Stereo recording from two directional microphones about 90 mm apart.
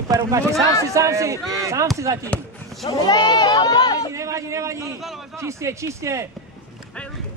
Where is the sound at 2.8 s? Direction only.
50° left (ahead or behind).